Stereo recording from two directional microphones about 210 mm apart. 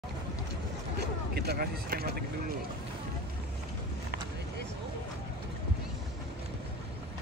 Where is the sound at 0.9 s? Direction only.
50° right (ahead or behind).